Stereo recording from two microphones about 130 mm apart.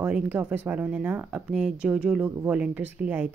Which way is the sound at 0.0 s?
10° right (ahead or behind).